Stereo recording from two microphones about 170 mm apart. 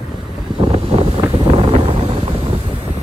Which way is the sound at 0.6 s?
30° right (ahead or behind).